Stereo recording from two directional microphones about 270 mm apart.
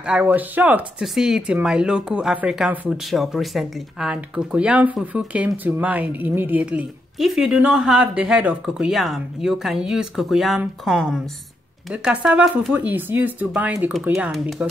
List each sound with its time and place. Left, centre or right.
0.0 s speech: centre